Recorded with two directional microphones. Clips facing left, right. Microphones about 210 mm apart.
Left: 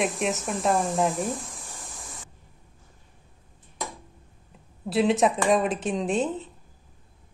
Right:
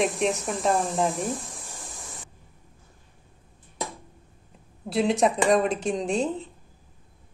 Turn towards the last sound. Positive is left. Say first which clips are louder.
# even
turn(degrees=0)  # may be behind; listen again after turning